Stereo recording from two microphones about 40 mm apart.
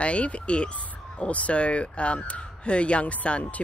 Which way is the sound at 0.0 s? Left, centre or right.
Left.